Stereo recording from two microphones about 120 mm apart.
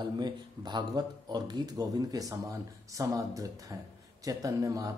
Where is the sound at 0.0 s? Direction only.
40° right (ahead or behind).